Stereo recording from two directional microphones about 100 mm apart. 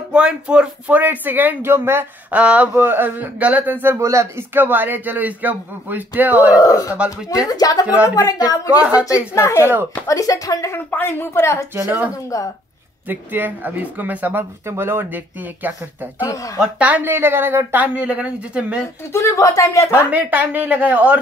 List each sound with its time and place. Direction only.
0.1 s speech: 10° right (ahead or behind)
2.4 s a man's voice: 10° right (ahead or behind)
6.5 s speech: 35° left (ahead or behind)
9.3 s a man's voice: 25° left (ahead or behind)
10.9 s a man's voice: 20° left (ahead or behind)
11.7 s a man's voice: 20° right (ahead or behind)
13.1 s a man's voice: 20° right (ahead or behind)
16.3 s speech: 35° left (ahead or behind)
16.5 s speech: 15° right (ahead or behind)
19.1 s speech: 30° left (ahead or behind)
20.1 s speech: 15° right (ahead or behind)